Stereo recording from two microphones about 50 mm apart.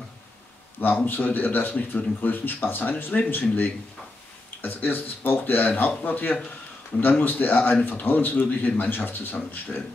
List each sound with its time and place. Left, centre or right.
0.7 s speech: left
3.3 s speech: left